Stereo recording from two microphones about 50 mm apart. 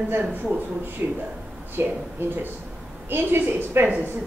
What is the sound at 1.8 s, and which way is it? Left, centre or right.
A woman's voice, right.